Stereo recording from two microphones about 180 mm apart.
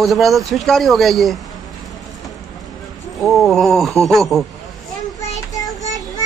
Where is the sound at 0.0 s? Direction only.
Centre (ahead or behind).